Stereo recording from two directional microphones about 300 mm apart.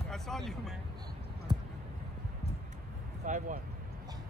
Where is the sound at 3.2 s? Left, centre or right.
Right.